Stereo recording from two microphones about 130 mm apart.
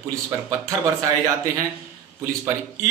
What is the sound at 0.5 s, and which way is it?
Speech, 25° right (ahead or behind).